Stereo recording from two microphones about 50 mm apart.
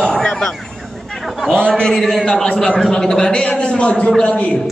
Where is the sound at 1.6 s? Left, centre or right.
Centre.